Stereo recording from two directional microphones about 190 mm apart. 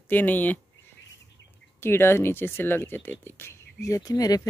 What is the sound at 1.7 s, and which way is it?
Speech, 10° left (ahead or behind).